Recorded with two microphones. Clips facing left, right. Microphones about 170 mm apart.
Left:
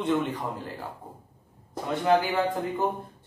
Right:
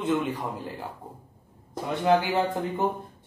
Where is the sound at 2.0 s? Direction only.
25° right (ahead or behind).